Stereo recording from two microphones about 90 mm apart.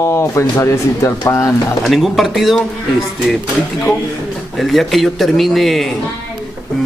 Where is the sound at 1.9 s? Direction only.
Centre (ahead or behind).